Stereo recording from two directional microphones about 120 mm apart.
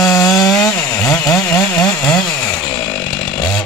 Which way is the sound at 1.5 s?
10° left (ahead or behind).